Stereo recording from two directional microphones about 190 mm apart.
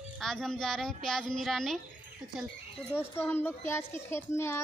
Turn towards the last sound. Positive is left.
turn(degrees=15)  # may be behind; listen again after turning